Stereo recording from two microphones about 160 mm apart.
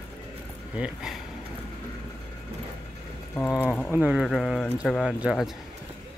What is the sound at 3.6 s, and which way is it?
Speech, 5° left (ahead or behind).